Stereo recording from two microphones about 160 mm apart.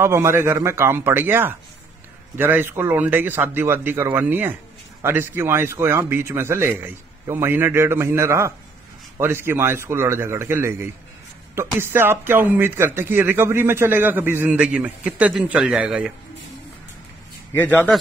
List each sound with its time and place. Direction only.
0.0 s speech: 15° right (ahead or behind)